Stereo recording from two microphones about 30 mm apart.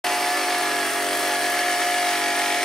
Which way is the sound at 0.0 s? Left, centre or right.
Centre.